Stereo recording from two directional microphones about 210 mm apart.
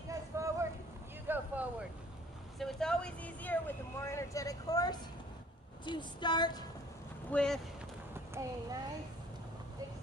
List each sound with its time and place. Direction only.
0.1 s a sound: 15° right (ahead or behind)
1.2 s vehicle: 10° right (ahead or behind)
2.6 s speech: 5° left (ahead or behind); by 6.5 s 20° left (ahead or behind)
7.2 s speech: 5° left (ahead or behind)
8.4 s a child's voice: 15° right (ahead or behind)